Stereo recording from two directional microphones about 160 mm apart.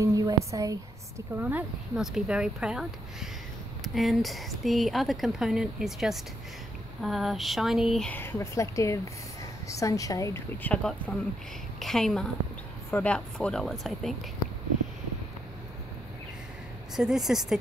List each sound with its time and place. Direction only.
0.0 s a woman's voice: 20° right (ahead or behind)
1.3 s speech: 10° right (ahead or behind)
8.1 s speech: 15° left (ahead or behind)
16.9 s speech: centre (ahead or behind)